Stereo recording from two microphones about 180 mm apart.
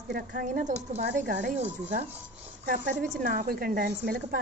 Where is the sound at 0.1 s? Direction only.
55° right (ahead or behind).